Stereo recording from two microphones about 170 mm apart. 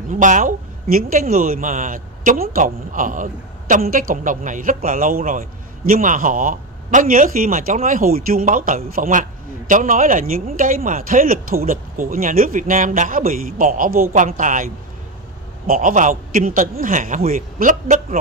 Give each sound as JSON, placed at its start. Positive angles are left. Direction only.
{"t": 0.1, "sound": "a man's voice", "side_deg": -50}